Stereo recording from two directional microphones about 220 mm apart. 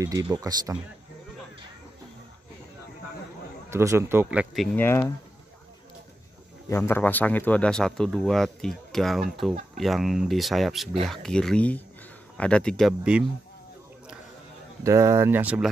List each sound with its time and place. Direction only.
0.0 s speech: 15° right (ahead or behind)
3.7 s speech: 15° right (ahead or behind)
4.7 s speech: 10° left (ahead or behind)
6.7 s speech: 10° left (ahead or behind)
14.8 s speech: 15° right (ahead or behind)